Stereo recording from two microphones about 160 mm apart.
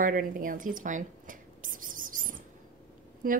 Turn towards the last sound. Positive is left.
turn(degrees=-60)  # may be behind; listen again after turning